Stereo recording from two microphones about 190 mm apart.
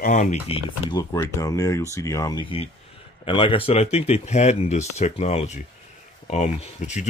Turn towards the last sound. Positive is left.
turn(degrees=40)  # may be behind; listen again after turning